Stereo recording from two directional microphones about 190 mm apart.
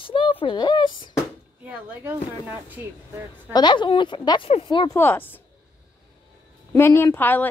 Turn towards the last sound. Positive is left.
turn(degrees=10)  # may be behind; listen again after turning